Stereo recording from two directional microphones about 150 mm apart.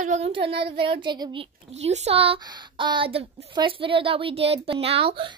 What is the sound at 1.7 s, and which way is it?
A woman's voice, 45° right (ahead or behind).